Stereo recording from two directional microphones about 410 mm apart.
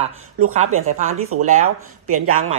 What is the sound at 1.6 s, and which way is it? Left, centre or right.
Speech, right.